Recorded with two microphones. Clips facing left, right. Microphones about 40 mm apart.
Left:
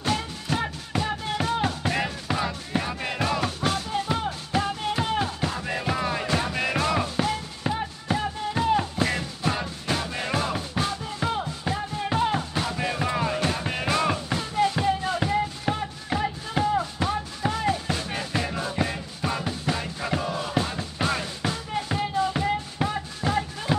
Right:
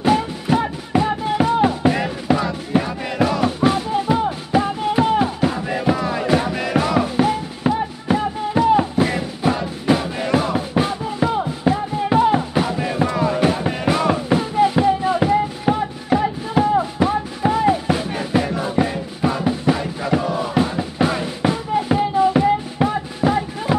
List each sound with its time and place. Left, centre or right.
0.0 s music: centre
13.4 s music: centre